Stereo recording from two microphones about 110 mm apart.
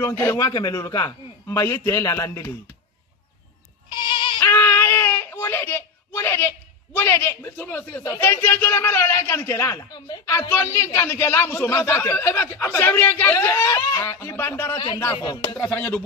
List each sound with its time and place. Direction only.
0.0 s a woman's voice: 25° left (ahead or behind)
3.9 s goat: 45° left (ahead or behind)
4.5 s baby cry: 20° left (ahead or behind)
8.2 s a woman's voice: 20° left (ahead or behind)
10.5 s a woman's voice: 20° left (ahead or behind)
14.8 s speech: 45° left (ahead or behind)
15.6 s music: 15° left (ahead or behind)